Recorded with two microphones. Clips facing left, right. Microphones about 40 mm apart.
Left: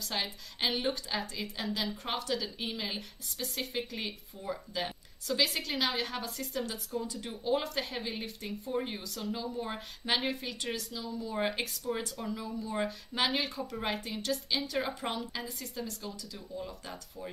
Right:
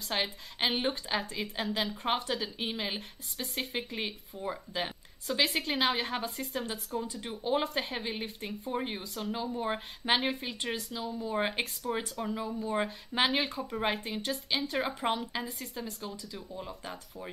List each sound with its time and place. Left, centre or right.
0.0 s a woman's voice: right